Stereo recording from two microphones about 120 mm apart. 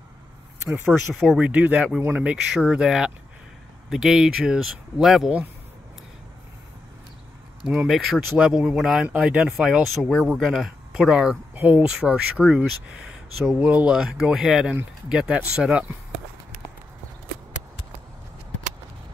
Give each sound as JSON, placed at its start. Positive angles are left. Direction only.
{"t": 0.8, "sound": "speech", "side_deg": -5}
{"t": 7.6, "sound": "speech", "side_deg": -5}
{"t": 11.5, "sound": "a sound", "side_deg": -15}
{"t": 11.9, "sound": "speech", "side_deg": -5}